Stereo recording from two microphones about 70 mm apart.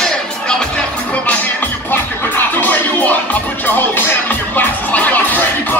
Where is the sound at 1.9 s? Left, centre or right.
Left.